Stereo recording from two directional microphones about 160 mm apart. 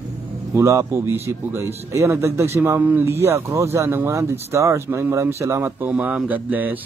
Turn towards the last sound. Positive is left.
turn(degrees=-10)  # may be behind; listen again after turning